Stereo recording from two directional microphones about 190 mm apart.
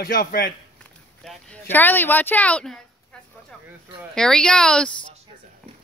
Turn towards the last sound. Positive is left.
turn(degrees=5)  # may be behind; listen again after turning